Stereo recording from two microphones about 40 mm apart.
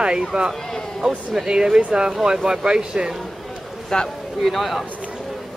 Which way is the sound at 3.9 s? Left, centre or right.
Centre.